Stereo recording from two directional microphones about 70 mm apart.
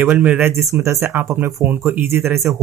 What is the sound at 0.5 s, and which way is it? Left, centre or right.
Speech, right.